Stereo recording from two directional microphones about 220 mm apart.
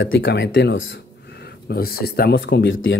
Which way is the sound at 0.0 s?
60° left (ahead or behind).